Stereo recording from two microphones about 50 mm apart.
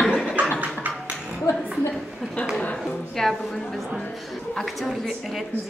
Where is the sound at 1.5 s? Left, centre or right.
Left.